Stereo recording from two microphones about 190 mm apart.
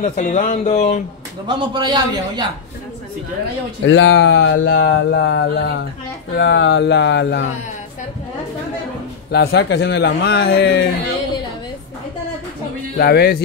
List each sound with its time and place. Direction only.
0.0 s speech: 40° left (ahead or behind)
1.5 s a man's voice: 25° right (ahead or behind)
3.8 s speech: 80° left
9.3 s a man's voice: 60° left (ahead or behind)
12.9 s a man's voice: 55° left (ahead or behind)